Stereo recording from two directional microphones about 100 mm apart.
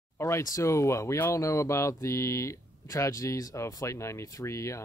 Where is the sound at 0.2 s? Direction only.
30° left (ahead or behind).